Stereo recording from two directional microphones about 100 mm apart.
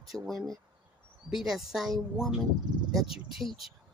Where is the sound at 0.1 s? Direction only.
10° right (ahead or behind).